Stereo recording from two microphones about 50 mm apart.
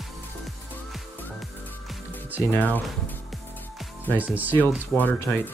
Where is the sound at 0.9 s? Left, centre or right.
Centre.